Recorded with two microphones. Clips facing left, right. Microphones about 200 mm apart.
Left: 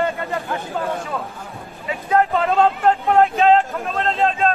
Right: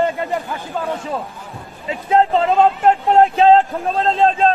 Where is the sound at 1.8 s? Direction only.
25° right (ahead or behind).